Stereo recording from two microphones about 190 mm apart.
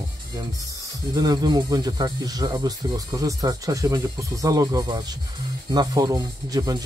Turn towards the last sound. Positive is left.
turn(degrees=-20)  # may be behind; listen again after turning